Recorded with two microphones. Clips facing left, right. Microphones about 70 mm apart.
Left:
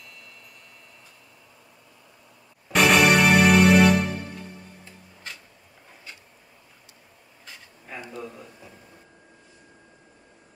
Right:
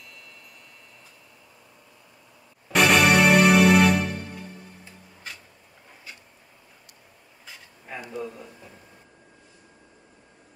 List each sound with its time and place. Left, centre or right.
0.0 s wind chime: centre
2.7 s music: centre
7.4 s a sound: centre
8.1 s a man's voice: centre